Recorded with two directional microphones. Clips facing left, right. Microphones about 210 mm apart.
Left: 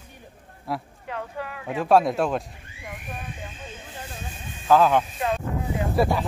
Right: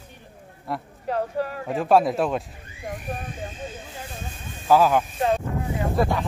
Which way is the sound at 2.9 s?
40° right (ahead or behind).